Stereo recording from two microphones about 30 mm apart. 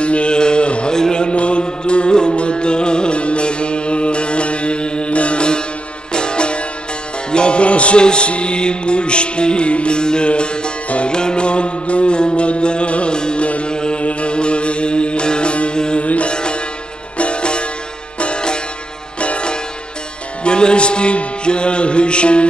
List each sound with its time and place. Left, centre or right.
0.0 s mantra: left
1.1 s music: left
13.7 s mantra: left
14.0 s music: left
18.2 s sitar: left
19.1 s music: left